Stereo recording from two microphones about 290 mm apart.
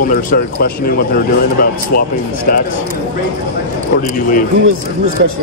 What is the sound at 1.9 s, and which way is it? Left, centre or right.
Speech, left.